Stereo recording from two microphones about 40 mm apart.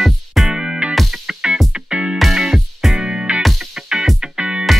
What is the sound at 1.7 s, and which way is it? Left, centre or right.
Music, right.